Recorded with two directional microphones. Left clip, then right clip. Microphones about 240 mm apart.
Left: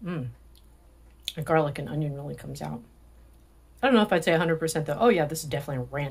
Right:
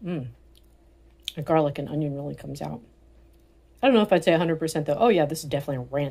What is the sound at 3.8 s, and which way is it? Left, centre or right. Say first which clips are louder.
Speech: right 3 dB; centre.